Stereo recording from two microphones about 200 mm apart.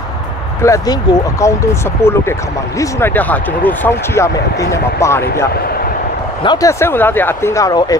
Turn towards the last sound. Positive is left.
turn(degrees=15)  # may be behind; listen again after turning